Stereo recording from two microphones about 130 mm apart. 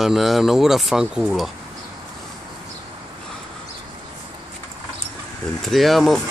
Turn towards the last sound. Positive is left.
turn(degrees=0)  # may be behind; listen again after turning